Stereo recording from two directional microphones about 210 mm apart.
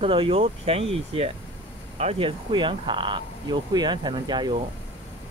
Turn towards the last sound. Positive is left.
turn(degrees=-20)  # may be behind; listen again after turning